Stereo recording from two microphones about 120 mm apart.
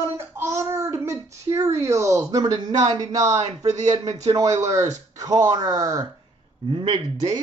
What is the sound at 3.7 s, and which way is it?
Speech, 75° right (ahead or behind).